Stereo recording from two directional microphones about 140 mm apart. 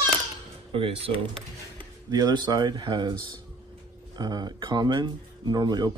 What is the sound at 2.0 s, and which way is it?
Speech, 30° right (ahead or behind).